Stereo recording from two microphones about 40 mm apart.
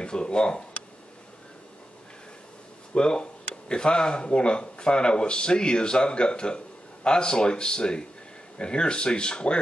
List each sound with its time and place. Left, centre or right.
0.0 s speech: left
2.9 s speech: left